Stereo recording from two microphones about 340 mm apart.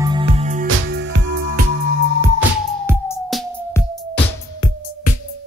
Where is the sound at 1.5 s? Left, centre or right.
Right.